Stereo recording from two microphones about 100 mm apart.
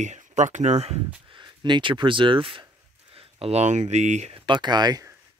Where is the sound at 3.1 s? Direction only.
75° right (ahead or behind).